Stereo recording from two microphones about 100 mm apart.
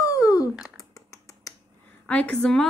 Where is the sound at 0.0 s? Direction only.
35° left (ahead or behind).